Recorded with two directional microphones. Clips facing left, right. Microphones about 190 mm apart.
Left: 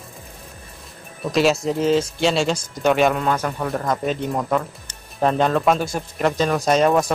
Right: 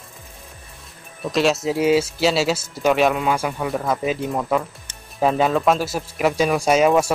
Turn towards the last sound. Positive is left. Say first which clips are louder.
# right 1 dB
turn(degrees=-10)  # may be behind; listen again after turning